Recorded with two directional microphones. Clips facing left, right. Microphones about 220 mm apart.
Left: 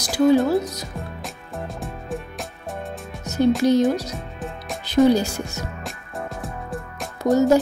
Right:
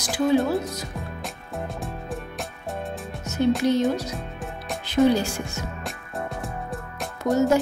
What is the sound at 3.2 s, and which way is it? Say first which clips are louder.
Music: left 4 dB; 35° left (ahead or behind).